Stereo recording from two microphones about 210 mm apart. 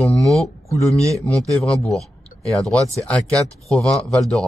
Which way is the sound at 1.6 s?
5° left (ahead or behind).